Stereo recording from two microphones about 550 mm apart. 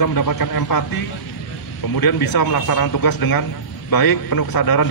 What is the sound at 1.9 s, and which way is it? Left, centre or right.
Speech, left.